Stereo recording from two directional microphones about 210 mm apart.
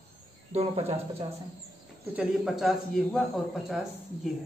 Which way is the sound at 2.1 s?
Centre (ahead or behind).